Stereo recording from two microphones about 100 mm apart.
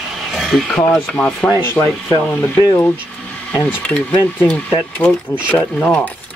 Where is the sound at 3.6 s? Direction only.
10° left (ahead or behind).